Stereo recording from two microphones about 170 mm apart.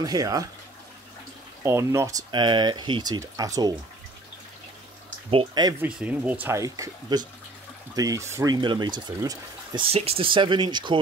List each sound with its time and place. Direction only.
0.0 s speech: 20° right (ahead or behind)
1.6 s speech: 15° right (ahead or behind)
5.3 s speech: 30° right (ahead or behind)
5.8 s speech: 5° right (ahead or behind)
6.4 s speech: 15° right (ahead or behind)